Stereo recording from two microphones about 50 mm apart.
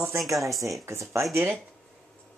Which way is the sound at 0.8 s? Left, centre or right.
Right.